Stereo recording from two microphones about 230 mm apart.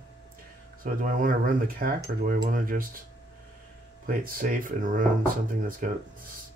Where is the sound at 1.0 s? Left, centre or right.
Right.